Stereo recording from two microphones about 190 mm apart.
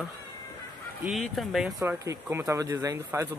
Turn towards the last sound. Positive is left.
turn(degrees=-15)  # may be behind; listen again after turning